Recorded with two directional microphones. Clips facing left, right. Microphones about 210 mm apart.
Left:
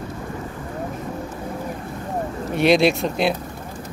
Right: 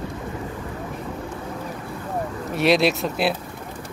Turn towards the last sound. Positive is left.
turn(degrees=-5)  # may be behind; listen again after turning